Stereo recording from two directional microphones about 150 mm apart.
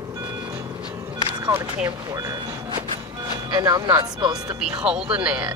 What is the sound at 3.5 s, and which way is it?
Speech, 25° right (ahead or behind).